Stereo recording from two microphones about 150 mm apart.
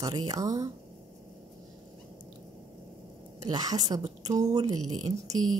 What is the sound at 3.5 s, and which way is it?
A woman's voice, 25° right (ahead or behind).